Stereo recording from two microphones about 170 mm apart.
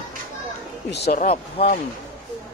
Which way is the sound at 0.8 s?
80° left.